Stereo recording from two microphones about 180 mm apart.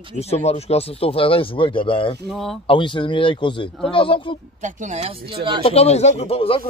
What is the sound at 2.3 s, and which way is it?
Speech, centre (ahead or behind).